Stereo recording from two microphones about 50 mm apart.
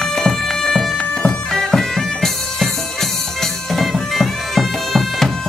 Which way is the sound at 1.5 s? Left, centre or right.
Centre.